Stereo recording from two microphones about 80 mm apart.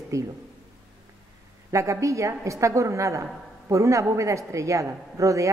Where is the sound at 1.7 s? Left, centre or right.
Right.